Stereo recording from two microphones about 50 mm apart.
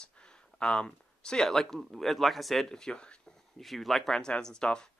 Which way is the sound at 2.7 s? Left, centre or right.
Centre.